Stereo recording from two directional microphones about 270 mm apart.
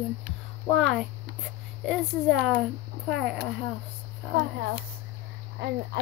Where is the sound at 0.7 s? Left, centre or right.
Centre.